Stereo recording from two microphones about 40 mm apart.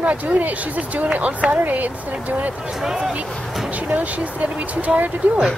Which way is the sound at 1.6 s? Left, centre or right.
Right.